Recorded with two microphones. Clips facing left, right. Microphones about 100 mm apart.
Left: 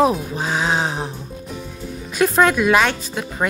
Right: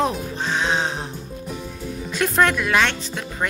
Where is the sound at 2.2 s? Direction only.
5° left (ahead or behind).